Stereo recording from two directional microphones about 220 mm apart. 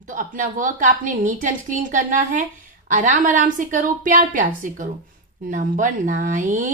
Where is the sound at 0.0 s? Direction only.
35° right (ahead or behind).